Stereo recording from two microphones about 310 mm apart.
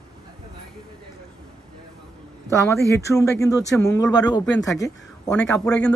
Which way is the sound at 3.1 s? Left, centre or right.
Centre.